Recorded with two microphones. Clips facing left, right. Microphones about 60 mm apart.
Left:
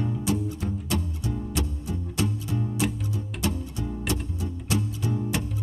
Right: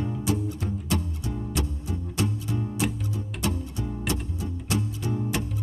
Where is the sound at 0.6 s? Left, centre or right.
Centre.